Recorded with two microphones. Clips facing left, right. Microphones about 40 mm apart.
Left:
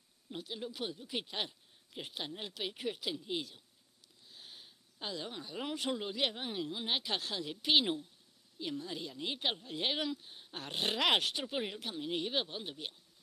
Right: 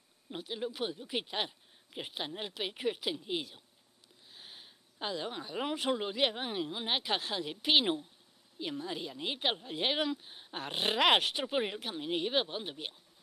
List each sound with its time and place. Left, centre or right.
0.3 s a woman's voice: centre